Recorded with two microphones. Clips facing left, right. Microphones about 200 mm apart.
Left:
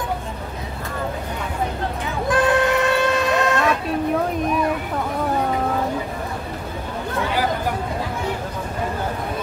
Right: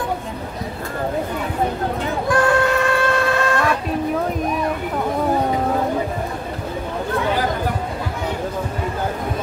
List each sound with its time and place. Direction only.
2.2 s music: 20° left (ahead or behind)